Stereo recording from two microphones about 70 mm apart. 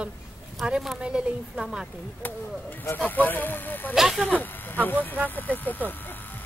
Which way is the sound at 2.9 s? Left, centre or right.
Left.